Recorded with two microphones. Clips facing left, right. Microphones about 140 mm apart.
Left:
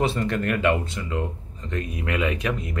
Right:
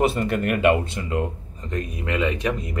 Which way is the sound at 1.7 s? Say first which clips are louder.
Right 1 dB; 5° left (ahead or behind).